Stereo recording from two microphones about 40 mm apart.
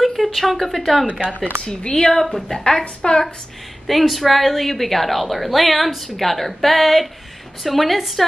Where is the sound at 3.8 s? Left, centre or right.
Centre.